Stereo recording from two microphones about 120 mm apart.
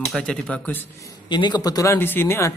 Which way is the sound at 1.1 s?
40° left (ahead or behind).